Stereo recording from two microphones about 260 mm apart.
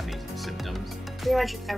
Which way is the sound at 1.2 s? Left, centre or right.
Centre.